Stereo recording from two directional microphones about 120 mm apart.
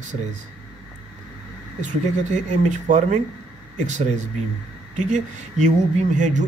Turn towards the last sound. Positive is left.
turn(degrees=-90)